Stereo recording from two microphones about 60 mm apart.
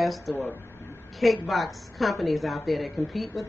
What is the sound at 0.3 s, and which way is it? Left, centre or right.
Speech, centre.